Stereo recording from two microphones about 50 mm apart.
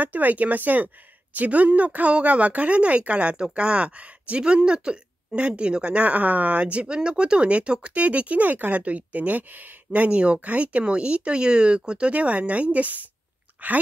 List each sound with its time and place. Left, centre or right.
0.0 s speech: right